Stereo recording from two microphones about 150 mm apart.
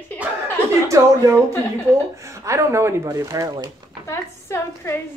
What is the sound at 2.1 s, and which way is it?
Speech, 20° right (ahead or behind).